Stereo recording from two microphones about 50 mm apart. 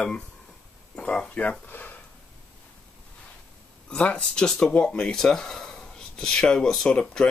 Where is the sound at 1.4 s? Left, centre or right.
Left.